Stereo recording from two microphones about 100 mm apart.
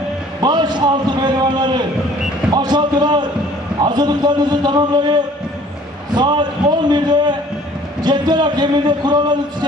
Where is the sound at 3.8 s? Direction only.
45° right (ahead or behind).